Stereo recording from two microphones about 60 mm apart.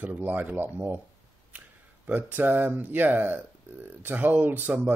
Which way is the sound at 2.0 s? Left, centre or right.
Right.